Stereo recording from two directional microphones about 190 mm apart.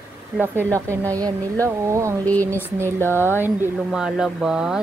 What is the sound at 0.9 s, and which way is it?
A woman's voice, 15° right (ahead or behind).